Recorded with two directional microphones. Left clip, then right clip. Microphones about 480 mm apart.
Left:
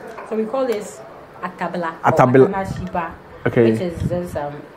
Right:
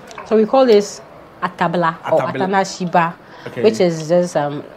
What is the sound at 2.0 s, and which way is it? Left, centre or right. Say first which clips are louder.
Speech: left 4 dB; left.